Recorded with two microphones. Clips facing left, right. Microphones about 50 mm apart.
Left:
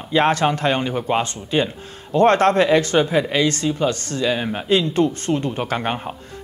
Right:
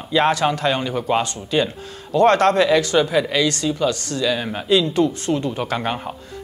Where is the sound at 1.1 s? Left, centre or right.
Left.